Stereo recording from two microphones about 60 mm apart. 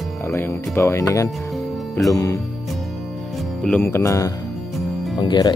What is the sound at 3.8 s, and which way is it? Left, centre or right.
Speech, left.